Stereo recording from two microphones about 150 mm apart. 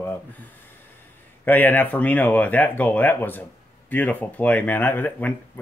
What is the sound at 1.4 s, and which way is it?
Speech, 10° left (ahead or behind).